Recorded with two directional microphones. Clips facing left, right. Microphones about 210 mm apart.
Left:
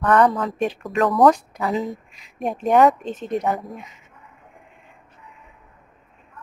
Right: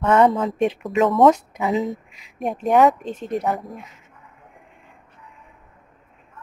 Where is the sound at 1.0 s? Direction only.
Centre (ahead or behind).